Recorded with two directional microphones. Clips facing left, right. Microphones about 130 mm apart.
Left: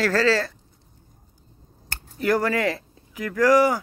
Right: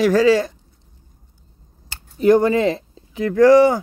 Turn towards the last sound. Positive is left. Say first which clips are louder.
# right 7 dB
turn(degrees=-25)  # may be behind; listen again after turning